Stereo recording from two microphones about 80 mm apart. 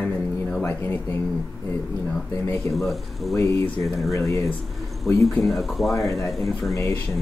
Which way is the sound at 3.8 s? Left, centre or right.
Centre.